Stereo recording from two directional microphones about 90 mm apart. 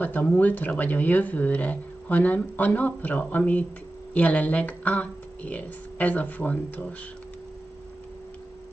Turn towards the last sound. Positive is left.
turn(degrees=15)  # may be behind; listen again after turning